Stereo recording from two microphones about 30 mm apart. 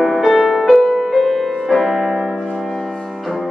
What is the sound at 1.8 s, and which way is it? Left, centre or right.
Piano, centre.